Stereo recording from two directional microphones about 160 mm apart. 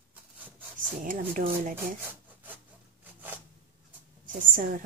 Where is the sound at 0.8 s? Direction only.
60° right (ahead or behind).